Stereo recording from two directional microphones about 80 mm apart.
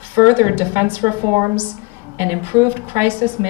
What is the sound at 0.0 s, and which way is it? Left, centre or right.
Speech, right.